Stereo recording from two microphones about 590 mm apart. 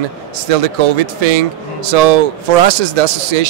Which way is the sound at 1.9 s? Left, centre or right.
Right.